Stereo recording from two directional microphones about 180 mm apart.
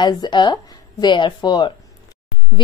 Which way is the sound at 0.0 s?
25° left (ahead or behind).